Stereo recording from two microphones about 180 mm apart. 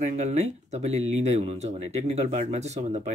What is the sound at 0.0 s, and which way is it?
Speech, 40° right (ahead or behind).